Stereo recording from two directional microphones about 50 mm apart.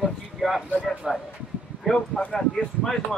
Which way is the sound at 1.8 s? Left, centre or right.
Centre.